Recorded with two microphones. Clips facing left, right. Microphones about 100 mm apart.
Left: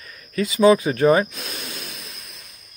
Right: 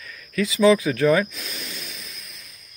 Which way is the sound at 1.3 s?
65° left (ahead or behind).